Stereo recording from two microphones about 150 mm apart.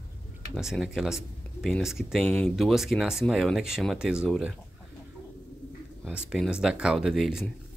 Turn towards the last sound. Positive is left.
turn(degrees=0)  # may be behind; listen again after turning